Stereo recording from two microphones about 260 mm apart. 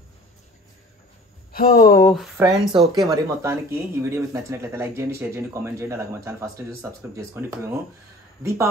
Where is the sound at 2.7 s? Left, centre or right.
Centre.